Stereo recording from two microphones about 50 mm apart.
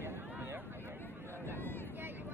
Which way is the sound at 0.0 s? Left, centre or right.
Right.